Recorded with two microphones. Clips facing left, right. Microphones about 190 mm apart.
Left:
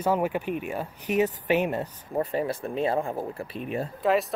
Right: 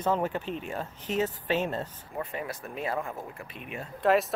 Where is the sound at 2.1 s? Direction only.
30° left (ahead or behind).